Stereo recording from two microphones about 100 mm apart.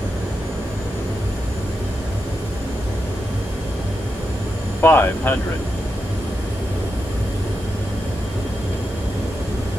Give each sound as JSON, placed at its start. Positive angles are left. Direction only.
{"t": 4.8, "sound": "speech", "side_deg": 20}